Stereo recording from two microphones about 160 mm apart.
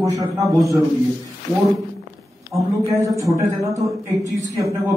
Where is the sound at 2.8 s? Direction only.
20° right (ahead or behind).